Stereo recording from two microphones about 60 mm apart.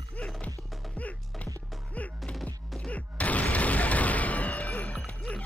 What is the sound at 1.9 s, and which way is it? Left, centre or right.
Music, left.